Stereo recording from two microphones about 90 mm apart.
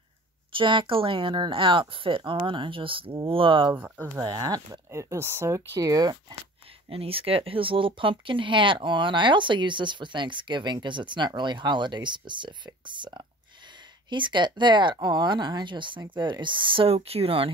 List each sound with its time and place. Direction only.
0.5 s speech: 70° right (ahead or behind)
3.7 s speech: 20° right (ahead or behind)
4.2 s speech: 45° right (ahead or behind); by 5.6 s 30° right (ahead or behind)
5.8 s speech: 45° right (ahead or behind)
6.9 s speech: 90° right